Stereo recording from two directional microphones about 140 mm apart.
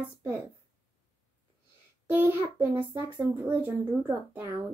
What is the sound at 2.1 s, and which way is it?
Speech, 15° right (ahead or behind).